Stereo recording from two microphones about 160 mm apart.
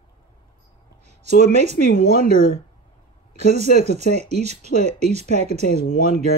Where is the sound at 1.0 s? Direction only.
45° right (ahead or behind).